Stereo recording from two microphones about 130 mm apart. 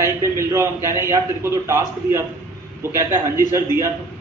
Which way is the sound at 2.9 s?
20° right (ahead or behind).